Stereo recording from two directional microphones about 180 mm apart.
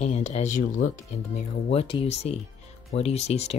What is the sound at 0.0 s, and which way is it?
Speech, 40° left (ahead or behind).